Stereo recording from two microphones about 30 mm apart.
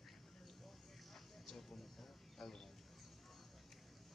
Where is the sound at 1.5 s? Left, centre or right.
Centre.